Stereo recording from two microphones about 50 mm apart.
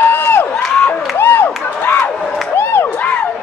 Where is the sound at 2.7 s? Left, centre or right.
Left.